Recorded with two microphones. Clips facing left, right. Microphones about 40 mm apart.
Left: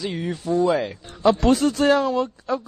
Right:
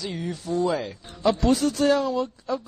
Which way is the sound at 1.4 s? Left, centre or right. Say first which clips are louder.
Left 3 dB; left.